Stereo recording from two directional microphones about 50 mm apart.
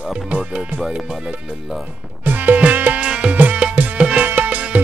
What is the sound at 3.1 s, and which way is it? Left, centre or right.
Music, right.